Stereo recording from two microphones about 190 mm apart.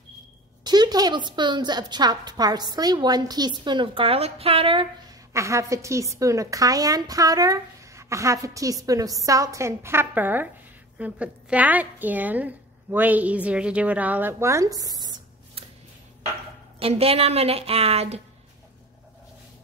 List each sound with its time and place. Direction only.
0.7 s a woman's voice: 20° right (ahead or behind)
5.3 s a woman's voice: 15° right (ahead or behind)
16.8 s a woman's voice: 30° right (ahead or behind)